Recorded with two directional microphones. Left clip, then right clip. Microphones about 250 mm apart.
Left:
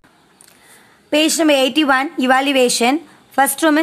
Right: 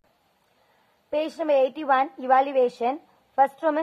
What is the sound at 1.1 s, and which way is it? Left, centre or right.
A woman's voice, centre.